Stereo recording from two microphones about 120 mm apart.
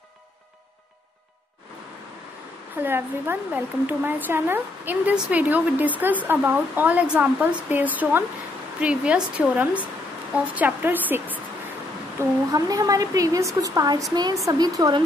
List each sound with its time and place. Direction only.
2.8 s speech: 15° right (ahead or behind)
12.2 s a woman's voice: 30° right (ahead or behind)